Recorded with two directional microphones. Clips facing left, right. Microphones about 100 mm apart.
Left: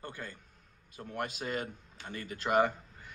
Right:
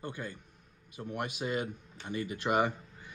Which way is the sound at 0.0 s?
15° right (ahead or behind).